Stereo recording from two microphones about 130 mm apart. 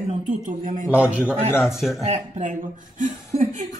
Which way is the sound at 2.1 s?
65° right (ahead or behind).